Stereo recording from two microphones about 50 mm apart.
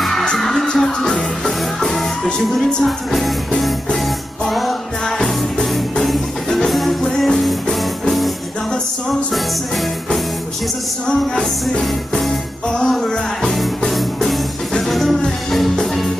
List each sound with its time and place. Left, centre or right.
0.4 s music: centre
2.5 s music: centre
5.2 s music: centre
12.9 s music: centre